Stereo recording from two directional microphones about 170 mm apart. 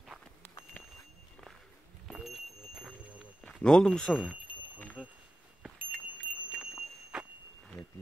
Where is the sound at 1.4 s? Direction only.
5° left (ahead or behind).